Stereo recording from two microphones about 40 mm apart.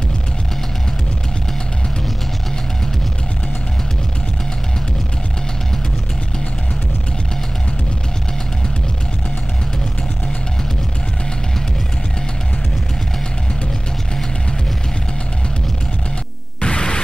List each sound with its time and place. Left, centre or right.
16.6 s music: centre